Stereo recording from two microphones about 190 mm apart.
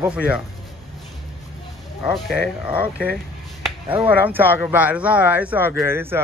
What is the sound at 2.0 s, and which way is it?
Speech, 5° right (ahead or behind).